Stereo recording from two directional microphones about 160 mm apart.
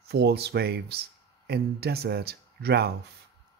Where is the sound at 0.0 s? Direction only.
90° right.